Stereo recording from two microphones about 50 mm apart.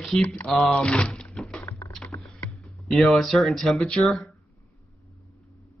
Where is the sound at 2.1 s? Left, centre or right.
Left.